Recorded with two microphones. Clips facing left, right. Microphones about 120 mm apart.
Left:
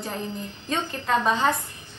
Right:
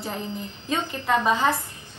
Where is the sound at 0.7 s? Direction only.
10° right (ahead or behind).